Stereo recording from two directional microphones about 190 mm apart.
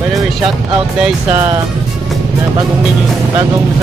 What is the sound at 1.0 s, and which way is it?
Speech, 10° right (ahead or behind).